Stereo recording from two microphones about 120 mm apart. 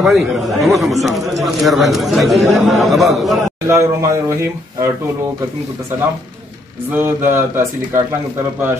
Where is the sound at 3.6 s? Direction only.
25° right (ahead or behind).